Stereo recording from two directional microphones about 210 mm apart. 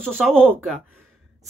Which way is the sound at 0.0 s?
5° right (ahead or behind).